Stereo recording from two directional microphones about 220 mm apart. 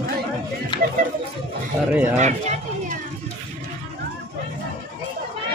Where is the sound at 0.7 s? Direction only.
20° left (ahead or behind).